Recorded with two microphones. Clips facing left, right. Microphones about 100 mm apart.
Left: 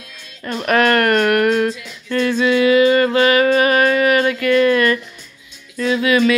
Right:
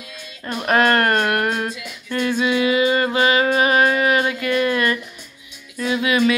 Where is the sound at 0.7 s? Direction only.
25° right (ahead or behind).